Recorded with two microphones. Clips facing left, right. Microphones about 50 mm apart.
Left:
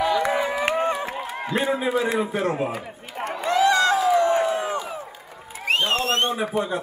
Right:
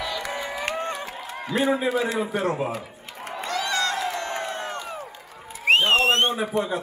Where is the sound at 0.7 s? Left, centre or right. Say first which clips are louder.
Left 6 dB; centre.